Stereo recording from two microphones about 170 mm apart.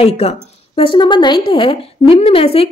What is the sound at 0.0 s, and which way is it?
A woman's voice, 35° left (ahead or behind).